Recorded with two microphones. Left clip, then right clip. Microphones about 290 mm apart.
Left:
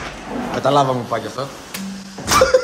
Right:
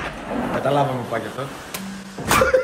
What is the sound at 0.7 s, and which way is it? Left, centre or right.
Speech, left.